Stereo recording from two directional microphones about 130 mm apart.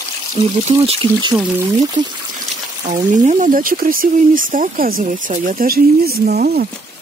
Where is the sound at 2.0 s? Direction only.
35° right (ahead or behind).